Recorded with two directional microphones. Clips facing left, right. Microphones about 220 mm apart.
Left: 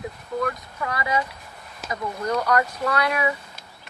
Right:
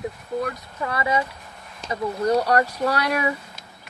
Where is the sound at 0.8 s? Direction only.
30° right (ahead or behind).